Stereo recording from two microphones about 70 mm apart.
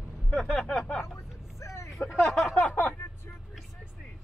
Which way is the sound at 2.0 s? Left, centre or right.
Left.